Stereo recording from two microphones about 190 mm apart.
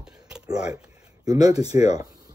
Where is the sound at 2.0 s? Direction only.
20° right (ahead or behind).